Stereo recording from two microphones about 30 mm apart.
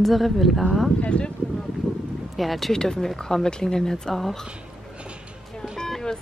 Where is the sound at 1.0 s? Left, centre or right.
Left.